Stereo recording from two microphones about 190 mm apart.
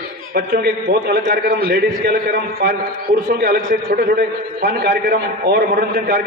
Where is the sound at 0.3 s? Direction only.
55° right (ahead or behind).